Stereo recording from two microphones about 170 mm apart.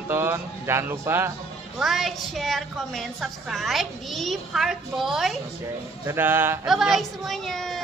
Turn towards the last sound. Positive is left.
turn(degrees=0)  # may be behind; listen again after turning